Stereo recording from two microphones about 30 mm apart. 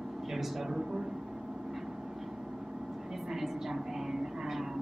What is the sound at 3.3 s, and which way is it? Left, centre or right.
Vehicle, centre.